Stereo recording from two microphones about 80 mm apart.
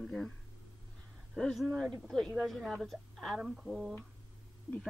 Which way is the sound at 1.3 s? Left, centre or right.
Centre.